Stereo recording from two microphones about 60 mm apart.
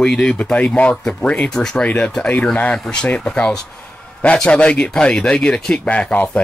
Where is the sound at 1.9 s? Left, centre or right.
Left.